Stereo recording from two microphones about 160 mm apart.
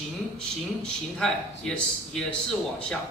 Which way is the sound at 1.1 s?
5° left (ahead or behind).